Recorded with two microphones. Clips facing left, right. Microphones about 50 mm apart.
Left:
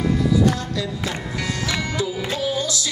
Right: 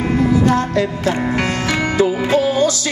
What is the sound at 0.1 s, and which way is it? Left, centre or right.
Music, right.